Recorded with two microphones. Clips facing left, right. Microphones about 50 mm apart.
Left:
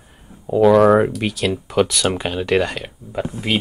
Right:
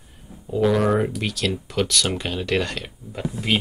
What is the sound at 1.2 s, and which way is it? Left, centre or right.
Speech, centre.